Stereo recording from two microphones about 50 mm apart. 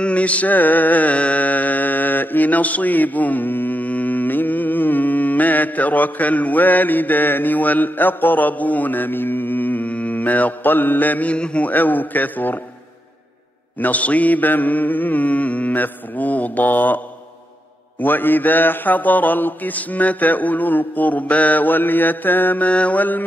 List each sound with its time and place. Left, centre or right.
0.0 s music: left
11.3 s mantra: left
11.6 s mantra: left
13.7 s mantra: left
18.0 s mantra: left
22.7 s mantra: left